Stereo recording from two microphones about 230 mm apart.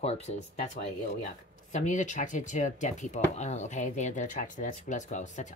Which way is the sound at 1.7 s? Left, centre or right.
Left.